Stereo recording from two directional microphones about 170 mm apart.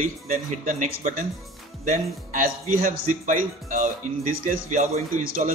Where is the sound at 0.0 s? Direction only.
50° right (ahead or behind).